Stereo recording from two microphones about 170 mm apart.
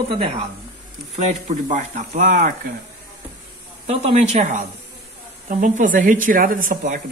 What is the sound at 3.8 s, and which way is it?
A woman's voice, 35° right (ahead or behind).